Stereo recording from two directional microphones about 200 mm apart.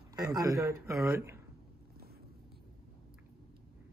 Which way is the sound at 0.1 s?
15° right (ahead or behind).